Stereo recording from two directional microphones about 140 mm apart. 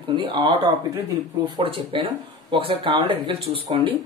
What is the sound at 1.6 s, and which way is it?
Speech, 40° right (ahead or behind).